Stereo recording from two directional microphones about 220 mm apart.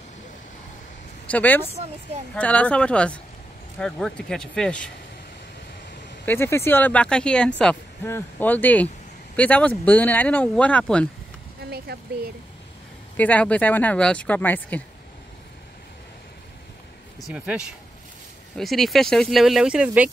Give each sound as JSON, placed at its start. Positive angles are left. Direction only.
{"t": 1.2, "sound": "speech", "side_deg": 5}
{"t": 6.2, "sound": "speech", "side_deg": 10}
{"t": 11.6, "sound": "speech", "side_deg": -45}
{"t": 13.1, "sound": "speech", "side_deg": 5}
{"t": 17.3, "sound": "speech", "side_deg": -5}